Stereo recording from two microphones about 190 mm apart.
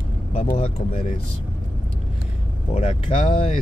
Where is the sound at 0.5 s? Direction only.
30° left (ahead or behind).